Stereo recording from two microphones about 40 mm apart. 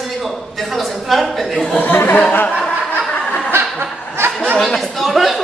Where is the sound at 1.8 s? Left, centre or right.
Left.